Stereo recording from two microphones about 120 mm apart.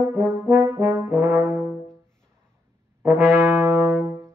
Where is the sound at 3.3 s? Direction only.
20° right (ahead or behind).